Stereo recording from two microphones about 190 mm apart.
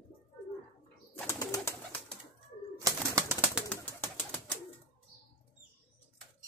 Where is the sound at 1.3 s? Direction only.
15° left (ahead or behind).